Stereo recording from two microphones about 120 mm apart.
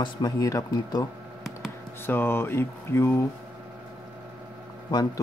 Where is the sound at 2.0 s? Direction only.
20° left (ahead or behind).